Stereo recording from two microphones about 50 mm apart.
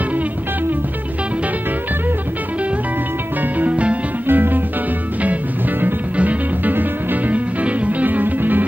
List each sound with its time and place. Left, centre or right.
3.5 s music: right
4.3 s music: right
6.1 s music: right